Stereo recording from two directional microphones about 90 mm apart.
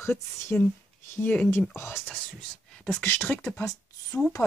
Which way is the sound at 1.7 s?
25° left (ahead or behind).